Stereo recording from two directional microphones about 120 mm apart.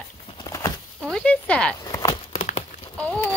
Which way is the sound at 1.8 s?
30° left (ahead or behind).